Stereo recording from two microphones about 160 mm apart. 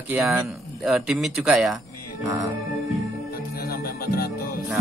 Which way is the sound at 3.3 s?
70° left (ahead or behind).